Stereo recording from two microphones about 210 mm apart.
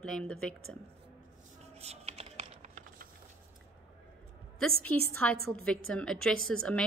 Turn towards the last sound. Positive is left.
turn(degrees=5)  # may be behind; listen again after turning